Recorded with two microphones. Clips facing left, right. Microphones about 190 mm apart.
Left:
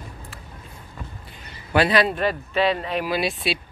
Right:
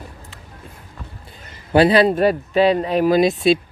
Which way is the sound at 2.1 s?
40° right (ahead or behind).